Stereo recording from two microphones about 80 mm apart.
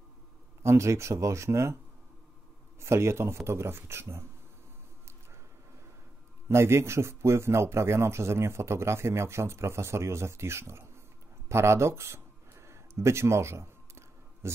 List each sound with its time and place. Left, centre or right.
0.6 s a man's voice: right
2.8 s a man's voice: right
6.5 s a man's voice: right
11.4 s a sound: right